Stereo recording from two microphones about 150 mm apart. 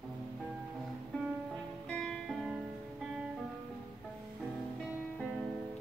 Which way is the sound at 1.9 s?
Centre (ahead or behind).